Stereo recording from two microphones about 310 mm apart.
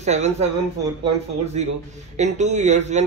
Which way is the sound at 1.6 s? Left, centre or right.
Right.